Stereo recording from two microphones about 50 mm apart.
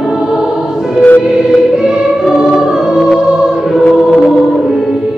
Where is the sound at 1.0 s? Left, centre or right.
Left.